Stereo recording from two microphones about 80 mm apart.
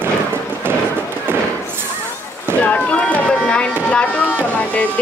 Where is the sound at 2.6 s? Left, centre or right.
Centre.